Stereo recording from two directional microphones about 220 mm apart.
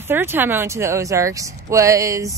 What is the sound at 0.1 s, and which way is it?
Speech, 10° right (ahead or behind).